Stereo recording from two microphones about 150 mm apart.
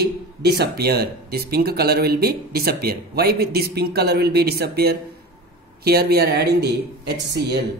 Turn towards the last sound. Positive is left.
turn(degrees=-90)